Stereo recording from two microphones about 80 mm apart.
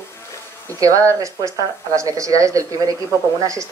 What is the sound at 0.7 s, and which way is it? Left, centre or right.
Speech, right.